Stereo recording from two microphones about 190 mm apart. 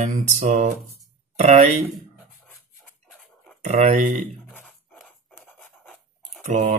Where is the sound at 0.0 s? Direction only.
40° right (ahead or behind).